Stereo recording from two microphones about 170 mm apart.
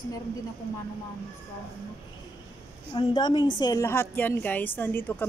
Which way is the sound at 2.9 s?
25° left (ahead or behind).